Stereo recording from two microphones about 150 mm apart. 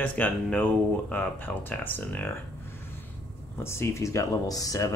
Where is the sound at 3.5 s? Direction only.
15° left (ahead or behind).